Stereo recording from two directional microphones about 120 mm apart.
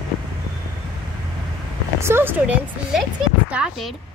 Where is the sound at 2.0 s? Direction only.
20° right (ahead or behind).